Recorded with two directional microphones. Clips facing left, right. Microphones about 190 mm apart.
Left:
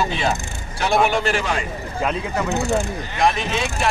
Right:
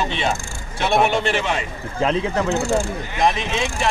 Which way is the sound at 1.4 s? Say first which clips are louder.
Even; 25° right (ahead or behind).